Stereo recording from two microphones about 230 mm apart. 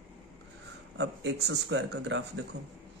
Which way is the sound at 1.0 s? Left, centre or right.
Right.